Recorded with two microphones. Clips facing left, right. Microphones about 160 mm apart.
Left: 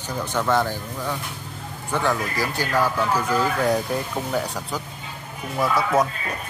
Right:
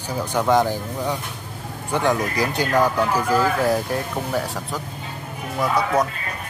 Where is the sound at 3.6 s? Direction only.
Centre (ahead or behind).